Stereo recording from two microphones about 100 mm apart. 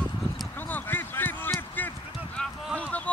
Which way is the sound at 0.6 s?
20° left (ahead or behind).